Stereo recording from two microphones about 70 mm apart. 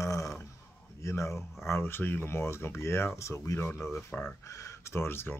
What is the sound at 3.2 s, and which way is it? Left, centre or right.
Speech, left.